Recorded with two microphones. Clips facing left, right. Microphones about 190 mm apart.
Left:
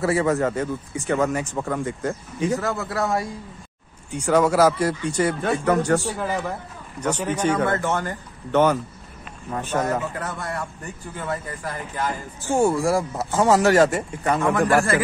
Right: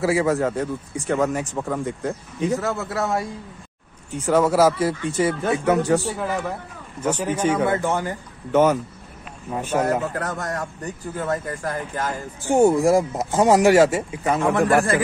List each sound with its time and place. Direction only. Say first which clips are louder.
0.0 s speech: right 1 dB; centre (ahead or behind)
10.0 s speech: right 3 dB; 45° right (ahead or behind)
12.4 s speech: right 4 dB; 20° right (ahead or behind); by 14.9 s centre (ahead or behind)